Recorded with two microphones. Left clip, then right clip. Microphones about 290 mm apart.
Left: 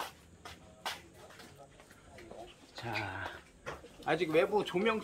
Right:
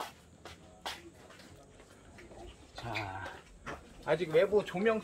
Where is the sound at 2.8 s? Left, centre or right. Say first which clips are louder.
Left 1 dB; centre.